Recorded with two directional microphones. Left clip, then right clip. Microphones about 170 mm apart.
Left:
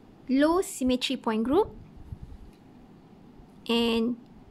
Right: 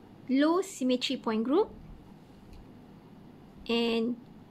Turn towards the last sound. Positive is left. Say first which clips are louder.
# left 3 dB
turn(degrees=35)  # may be behind; listen again after turning